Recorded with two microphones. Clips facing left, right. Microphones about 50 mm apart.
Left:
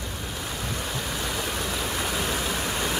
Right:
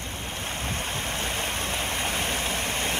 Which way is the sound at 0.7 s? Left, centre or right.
Right.